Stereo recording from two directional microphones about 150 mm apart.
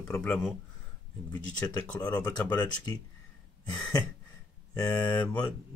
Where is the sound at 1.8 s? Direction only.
10° left (ahead or behind).